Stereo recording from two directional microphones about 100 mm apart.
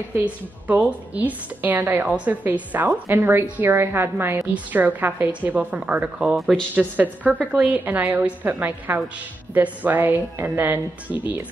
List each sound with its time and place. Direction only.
0.2 s a woman's voice: 15° right (ahead or behind)
6.7 s a woman's voice: 15° right (ahead or behind)